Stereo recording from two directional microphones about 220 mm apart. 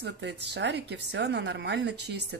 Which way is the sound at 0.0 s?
50° right (ahead or behind).